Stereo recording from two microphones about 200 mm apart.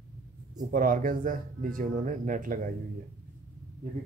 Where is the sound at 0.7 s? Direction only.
45° right (ahead or behind).